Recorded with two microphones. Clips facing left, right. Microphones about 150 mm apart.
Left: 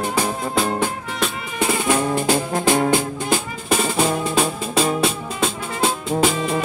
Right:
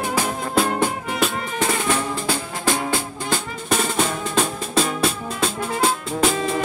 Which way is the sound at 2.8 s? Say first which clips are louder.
Left 5 dB; 20° left (ahead or behind).